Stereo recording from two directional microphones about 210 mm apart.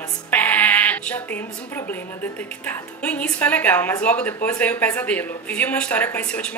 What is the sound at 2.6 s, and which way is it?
Speech, 5° left (ahead or behind).